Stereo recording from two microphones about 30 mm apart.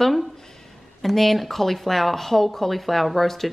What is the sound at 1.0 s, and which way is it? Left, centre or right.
Speech, centre.